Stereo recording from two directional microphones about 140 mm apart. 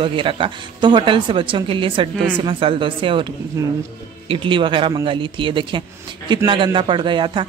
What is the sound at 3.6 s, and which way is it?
Speech, 25° right (ahead or behind).